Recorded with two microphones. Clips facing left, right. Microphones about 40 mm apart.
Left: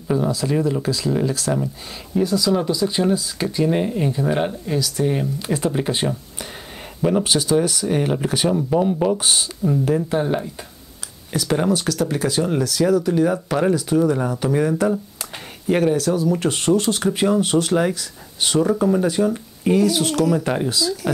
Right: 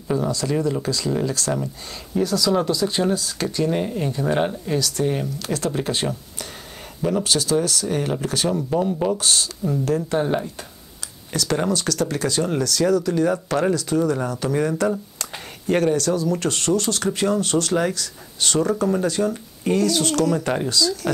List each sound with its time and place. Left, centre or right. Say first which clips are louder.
0.1 s speech: left 2 dB; centre
5.4 s speech: left 3 dB; centre
10.1 s speech: left 1 dB; centre